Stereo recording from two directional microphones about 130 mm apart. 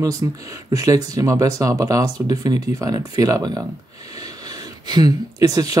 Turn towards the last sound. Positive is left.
turn(degrees=-30)  # may be behind; listen again after turning